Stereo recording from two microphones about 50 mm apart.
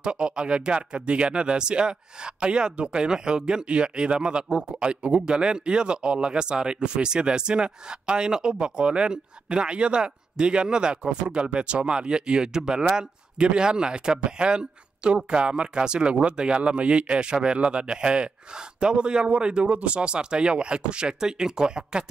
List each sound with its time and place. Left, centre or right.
0.0 s speech: centre